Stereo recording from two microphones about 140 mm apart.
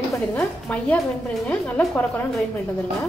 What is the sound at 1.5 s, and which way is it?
Speech, 10° left (ahead or behind).